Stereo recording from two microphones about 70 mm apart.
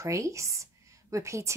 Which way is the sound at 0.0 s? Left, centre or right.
Right.